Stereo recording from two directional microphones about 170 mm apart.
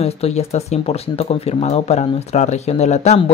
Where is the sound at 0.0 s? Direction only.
40° left (ahead or behind).